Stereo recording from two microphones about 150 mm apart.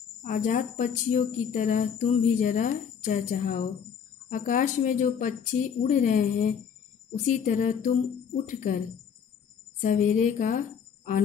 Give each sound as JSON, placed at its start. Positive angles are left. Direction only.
{"t": 0.2, "sound": "a woman's voice", "side_deg": 60}
{"t": 9.8, "sound": "a woman's voice", "side_deg": 55}